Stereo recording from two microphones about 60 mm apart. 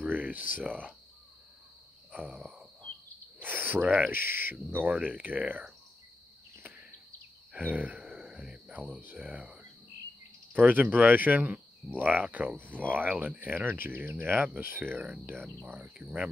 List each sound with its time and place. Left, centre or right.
0.0 s speech: right
2.3 s a sound: centre
3.4 s cricket: right
4.1 s speech: right
7.5 s a sound: right
8.7 s speech: centre
13.7 s speech: right
15.6 s speech: right